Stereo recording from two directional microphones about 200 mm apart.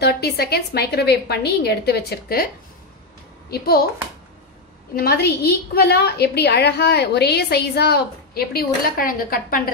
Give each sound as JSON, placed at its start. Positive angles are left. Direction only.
{"t": 0.0, "sound": "a woman's voice", "side_deg": 50}
{"t": 4.9, "sound": "a woman's voice", "side_deg": 50}